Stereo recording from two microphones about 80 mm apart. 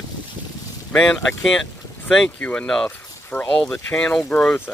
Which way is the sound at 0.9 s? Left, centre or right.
Centre.